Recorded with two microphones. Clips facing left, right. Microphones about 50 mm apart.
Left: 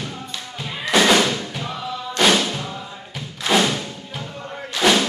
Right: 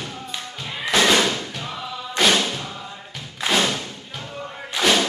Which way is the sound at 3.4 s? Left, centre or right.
Right.